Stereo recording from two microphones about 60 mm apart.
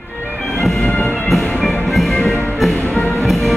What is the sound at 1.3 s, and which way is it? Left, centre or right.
Music, centre.